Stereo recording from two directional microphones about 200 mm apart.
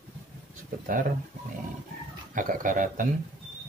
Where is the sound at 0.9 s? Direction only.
45° right (ahead or behind).